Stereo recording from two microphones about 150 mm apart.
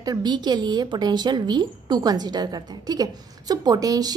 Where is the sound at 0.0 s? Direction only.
25° right (ahead or behind).